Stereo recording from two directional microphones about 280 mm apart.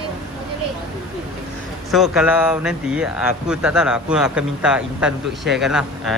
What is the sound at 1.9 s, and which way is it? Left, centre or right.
Speech, centre.